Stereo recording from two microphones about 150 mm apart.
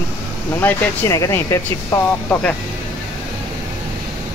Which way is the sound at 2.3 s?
10° left (ahead or behind).